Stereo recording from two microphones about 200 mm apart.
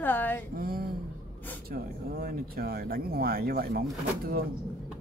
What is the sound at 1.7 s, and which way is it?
Speech, 50° right (ahead or behind).